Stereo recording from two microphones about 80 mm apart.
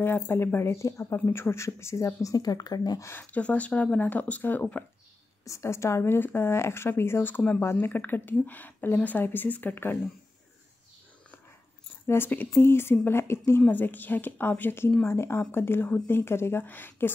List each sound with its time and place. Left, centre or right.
0.0 s speech: left
3.0 s speech: left
3.3 s a woman's voice: centre
5.4 s a woman's voice: left
12.1 s a woman's voice: left